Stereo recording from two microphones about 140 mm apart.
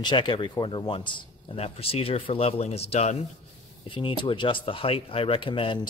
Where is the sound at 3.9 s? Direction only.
35° left (ahead or behind).